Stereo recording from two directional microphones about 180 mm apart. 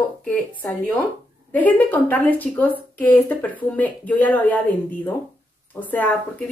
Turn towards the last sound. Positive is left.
turn(degrees=10)  # may be behind; listen again after turning